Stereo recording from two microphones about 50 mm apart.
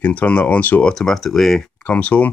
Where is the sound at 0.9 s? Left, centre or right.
Centre.